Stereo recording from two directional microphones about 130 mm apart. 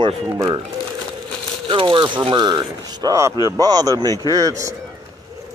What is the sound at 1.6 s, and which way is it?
Speech, 40° right (ahead or behind).